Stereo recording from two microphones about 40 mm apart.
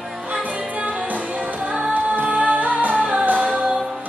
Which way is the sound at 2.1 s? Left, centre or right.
Right.